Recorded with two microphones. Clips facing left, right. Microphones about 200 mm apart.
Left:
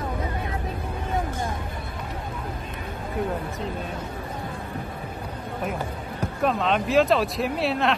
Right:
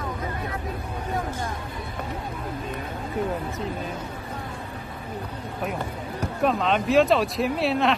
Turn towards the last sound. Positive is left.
turn(degrees=0)  # may be behind; listen again after turning